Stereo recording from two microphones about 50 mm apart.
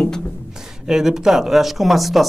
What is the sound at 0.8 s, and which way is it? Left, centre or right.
Speech, centre.